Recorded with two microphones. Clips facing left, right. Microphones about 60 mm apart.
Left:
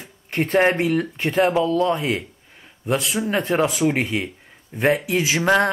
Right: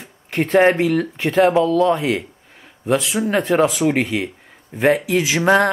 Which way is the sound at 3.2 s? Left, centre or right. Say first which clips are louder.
Right 4 dB; centre.